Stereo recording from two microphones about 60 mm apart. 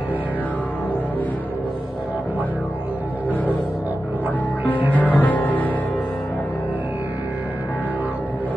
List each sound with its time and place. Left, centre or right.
4.6 s music: left